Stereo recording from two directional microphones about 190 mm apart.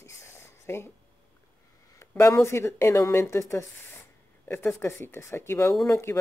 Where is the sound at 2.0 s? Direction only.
15° left (ahead or behind).